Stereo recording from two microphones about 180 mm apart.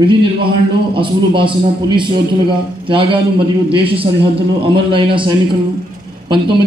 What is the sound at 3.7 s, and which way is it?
A man's voice, 30° right (ahead or behind).